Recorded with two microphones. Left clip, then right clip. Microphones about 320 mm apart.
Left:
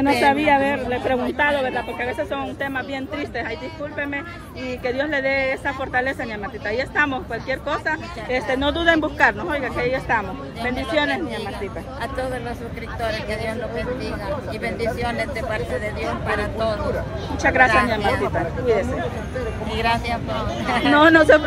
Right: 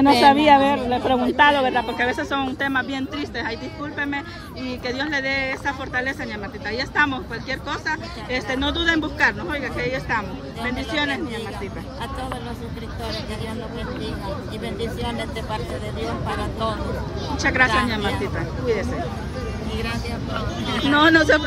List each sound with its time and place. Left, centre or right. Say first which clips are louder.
0.0 s speech: right 3 dB; right
4.8 s a woman's voice: left 3 dB; centre
17.4 s a woman's voice: left 3 dB; centre